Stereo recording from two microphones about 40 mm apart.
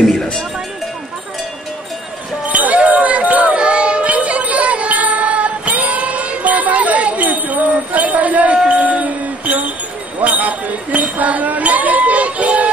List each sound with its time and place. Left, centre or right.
2.4 s basketball bounce: right
3.5 s child singing: right
8.6 s a sound: right